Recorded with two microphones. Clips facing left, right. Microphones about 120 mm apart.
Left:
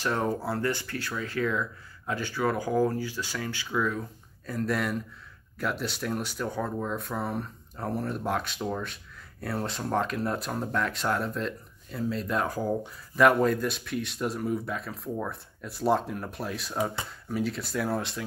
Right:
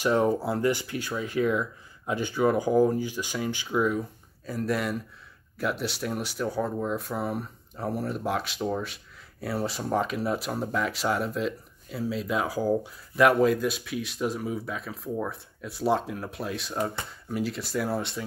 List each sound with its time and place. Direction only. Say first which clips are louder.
0.0 s speech: right 5 dB; 15° right (ahead or behind)
4.5 s speech: right 1 dB; centre (ahead or behind)